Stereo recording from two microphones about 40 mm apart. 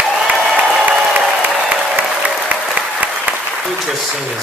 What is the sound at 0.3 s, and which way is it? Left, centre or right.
Applause, right.